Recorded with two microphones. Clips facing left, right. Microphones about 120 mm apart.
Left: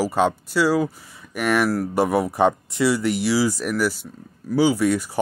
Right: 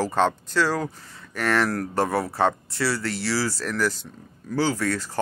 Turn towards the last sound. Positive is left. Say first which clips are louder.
# left 6 dB
turn(degrees=15)  # may be behind; listen again after turning